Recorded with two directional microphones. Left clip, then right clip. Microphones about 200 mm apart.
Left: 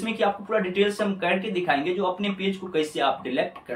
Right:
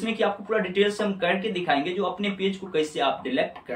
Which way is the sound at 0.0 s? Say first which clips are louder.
Left 1 dB; 5° right (ahead or behind).